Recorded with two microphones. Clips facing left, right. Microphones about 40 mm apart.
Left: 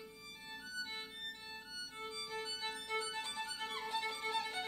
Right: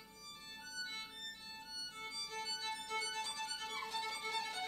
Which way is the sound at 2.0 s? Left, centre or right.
Centre.